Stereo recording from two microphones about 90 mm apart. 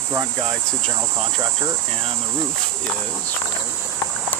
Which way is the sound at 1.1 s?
60° right (ahead or behind).